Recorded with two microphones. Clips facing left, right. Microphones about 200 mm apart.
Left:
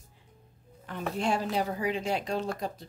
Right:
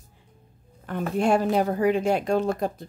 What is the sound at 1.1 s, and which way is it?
Speech, 50° right (ahead or behind).